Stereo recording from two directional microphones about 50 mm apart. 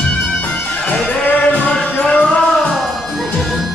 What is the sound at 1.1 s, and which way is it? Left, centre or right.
Music, left.